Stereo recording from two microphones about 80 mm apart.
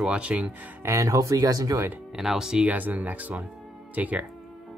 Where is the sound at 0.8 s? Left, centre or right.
Right.